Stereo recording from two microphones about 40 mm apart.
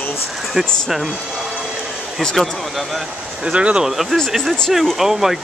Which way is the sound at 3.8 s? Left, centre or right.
Centre.